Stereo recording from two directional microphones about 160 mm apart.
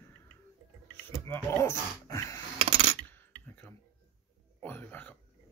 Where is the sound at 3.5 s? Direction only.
15° left (ahead or behind).